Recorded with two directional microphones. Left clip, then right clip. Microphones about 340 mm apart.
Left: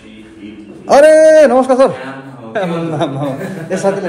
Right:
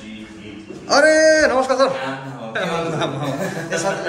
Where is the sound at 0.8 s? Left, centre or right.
Centre.